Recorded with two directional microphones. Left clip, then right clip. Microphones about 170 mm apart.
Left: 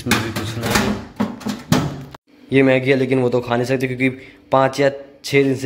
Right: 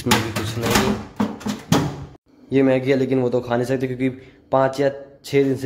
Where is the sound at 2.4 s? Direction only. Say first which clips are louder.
Left 3 dB; centre (ahead or behind).